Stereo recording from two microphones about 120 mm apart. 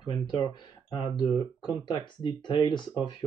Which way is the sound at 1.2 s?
10° right (ahead or behind).